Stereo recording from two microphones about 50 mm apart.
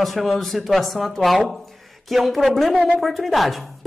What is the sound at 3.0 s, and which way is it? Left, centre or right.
Speech, centre.